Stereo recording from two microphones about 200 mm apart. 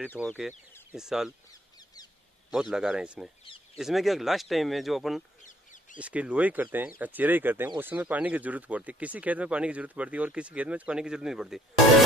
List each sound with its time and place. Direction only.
0.3 s speech: centre (ahead or behind)
1.5 s a sound: 20° left (ahead or behind)
2.5 s speech: 5° right (ahead or behind)
5.4 s bird: 40° left (ahead or behind)
5.9 s speech: 5° right (ahead or behind)